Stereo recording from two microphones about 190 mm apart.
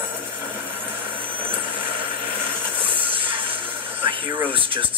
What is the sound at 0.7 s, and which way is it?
Vehicle, 25° right (ahead or behind).